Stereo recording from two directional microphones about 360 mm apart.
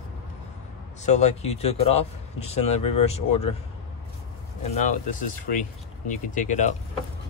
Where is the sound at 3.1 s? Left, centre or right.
Centre.